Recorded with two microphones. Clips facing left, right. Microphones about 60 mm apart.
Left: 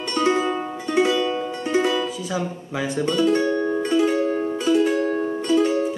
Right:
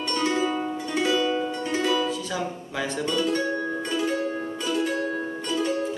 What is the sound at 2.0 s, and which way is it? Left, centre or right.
Speech, centre.